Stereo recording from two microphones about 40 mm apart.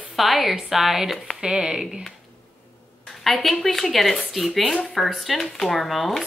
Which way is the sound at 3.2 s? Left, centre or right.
Centre.